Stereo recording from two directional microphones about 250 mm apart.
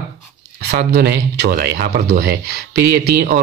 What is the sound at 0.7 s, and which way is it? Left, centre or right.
Speech, right.